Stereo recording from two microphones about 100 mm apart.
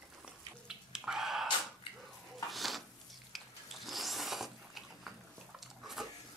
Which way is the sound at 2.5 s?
Centre (ahead or behind).